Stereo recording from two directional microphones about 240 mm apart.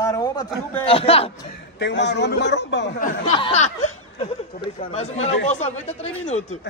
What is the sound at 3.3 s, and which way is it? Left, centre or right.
A man's voice, left.